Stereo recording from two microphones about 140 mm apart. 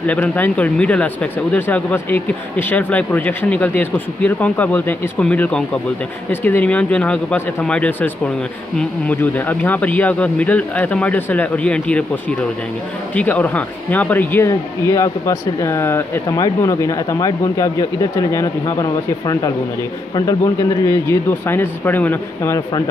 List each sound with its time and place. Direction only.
0.0 s speech: 10° left (ahead or behind)
9.1 s speech: 15° left (ahead or behind)
13.1 s speech: 10° left (ahead or behind)